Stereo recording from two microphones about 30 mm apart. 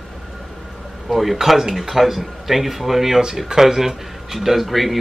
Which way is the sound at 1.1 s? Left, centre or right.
Centre.